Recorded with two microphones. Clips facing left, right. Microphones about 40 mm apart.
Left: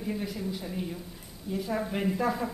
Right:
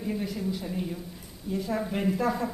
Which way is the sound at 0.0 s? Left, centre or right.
Centre.